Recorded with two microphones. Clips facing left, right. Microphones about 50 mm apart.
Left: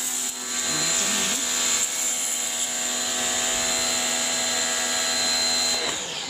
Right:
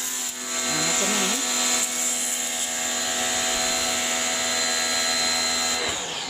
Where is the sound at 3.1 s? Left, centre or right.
Centre.